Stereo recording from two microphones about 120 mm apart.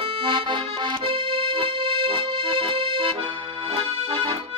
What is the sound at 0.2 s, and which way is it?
Accordion, 40° right (ahead or behind).